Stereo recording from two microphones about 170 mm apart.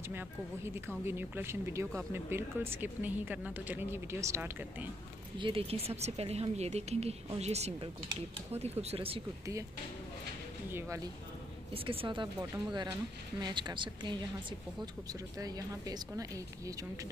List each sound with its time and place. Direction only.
0.1 s speech: 15° right (ahead or behind)
5.4 s a woman's voice: 35° right (ahead or behind)
10.7 s speech: 15° right (ahead or behind)
11.7 s speech: 35° right (ahead or behind)